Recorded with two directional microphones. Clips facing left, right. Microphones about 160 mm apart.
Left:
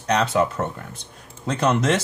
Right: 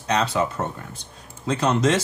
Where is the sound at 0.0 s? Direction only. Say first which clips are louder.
Left 2 dB; 55° left (ahead or behind).